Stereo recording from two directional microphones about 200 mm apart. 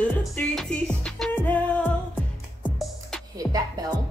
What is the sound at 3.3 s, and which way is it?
Music, 20° right (ahead or behind).